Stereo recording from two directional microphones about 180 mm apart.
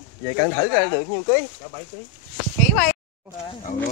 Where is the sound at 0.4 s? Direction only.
20° left (ahead or behind).